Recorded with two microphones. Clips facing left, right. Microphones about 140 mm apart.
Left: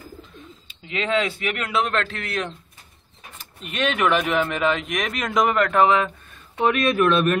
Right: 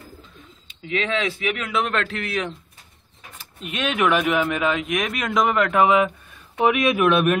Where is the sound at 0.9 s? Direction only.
Centre (ahead or behind).